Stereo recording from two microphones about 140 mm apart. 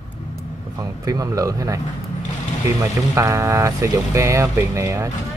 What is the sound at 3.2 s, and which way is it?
Speech, 20° right (ahead or behind).